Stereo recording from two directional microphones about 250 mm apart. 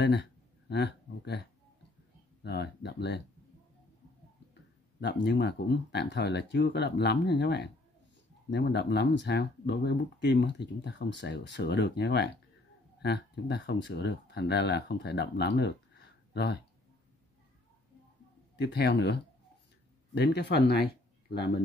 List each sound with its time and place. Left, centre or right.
0.0 s speech: left
5.0 s speech: left
18.6 s speech: left